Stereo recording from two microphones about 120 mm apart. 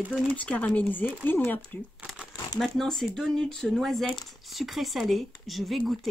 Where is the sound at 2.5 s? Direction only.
Centre (ahead or behind).